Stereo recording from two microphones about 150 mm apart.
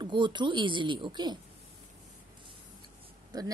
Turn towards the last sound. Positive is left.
turn(degrees=-25)  # may be behind; listen again after turning